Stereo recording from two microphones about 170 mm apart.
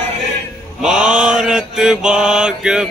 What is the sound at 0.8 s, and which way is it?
Mantra, 5° right (ahead or behind).